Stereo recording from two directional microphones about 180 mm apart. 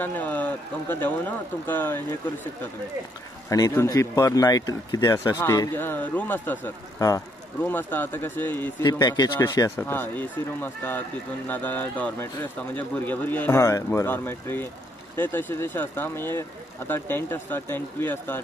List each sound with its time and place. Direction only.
0.0 s speech: 10° left (ahead or behind)
3.4 s speech: 20° left (ahead or behind)
8.8 s speech: 20° left (ahead or behind)